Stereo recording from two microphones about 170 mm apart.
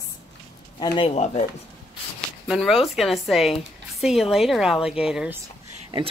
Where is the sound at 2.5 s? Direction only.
5° right (ahead or behind).